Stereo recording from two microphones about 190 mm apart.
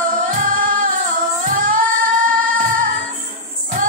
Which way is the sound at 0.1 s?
45° right (ahead or behind).